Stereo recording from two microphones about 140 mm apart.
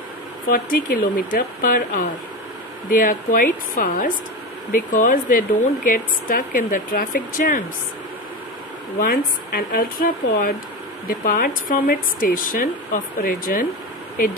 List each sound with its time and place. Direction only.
0.5 s speech: 85° left
9.0 s speech: 90° left